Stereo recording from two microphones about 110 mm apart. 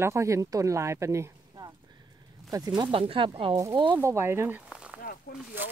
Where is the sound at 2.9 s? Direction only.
55° right (ahead or behind).